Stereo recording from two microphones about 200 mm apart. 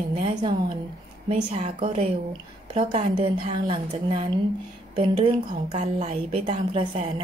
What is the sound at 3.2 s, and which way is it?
A woman's voice, 25° right (ahead or behind).